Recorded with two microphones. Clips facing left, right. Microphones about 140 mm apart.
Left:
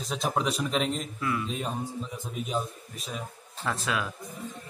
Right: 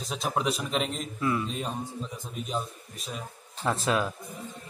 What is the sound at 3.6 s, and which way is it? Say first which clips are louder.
Speech: right 4 dB; 30° right (ahead or behind).